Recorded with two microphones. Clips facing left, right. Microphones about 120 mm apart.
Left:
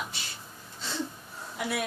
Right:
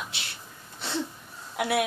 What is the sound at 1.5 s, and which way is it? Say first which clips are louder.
Speech: right 6 dB; 75° right (ahead or behind).